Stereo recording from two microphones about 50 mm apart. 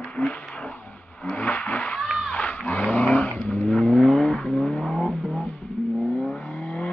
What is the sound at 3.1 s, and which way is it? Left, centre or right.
Vehicle, left.